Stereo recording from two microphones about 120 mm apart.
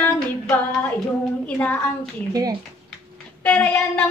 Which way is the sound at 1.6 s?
15° left (ahead or behind).